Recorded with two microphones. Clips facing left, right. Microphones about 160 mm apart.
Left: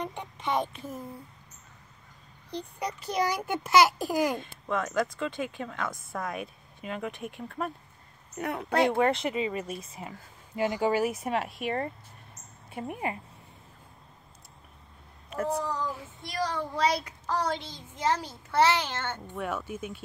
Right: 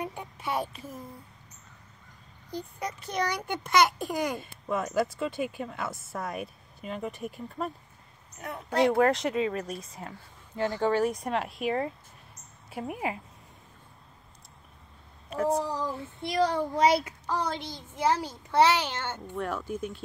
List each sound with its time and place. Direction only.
0.0 s a child's voice: 5° right (ahead or behind)
3.0 s a child's voice: 5° left (ahead or behind)
8.4 s speech: 70° left (ahead or behind)
8.8 s a child's voice: centre (ahead or behind)
15.6 s child singing: 30° right (ahead or behind)
17.3 s a child's voice: 15° right (ahead or behind)
19.3 s a child's voice: 5° left (ahead or behind)